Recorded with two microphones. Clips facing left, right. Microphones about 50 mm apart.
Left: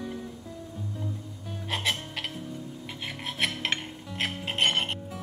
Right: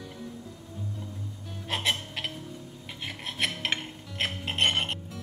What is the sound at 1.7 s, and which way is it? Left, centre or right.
Music, centre.